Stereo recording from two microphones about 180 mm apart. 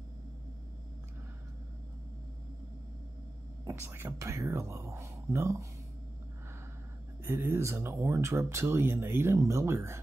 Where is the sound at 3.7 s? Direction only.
15° right (ahead or behind).